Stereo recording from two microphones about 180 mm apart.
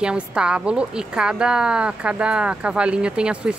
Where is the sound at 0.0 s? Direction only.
5° right (ahead or behind).